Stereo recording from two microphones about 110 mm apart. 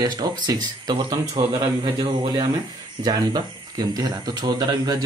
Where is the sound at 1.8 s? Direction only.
50° right (ahead or behind).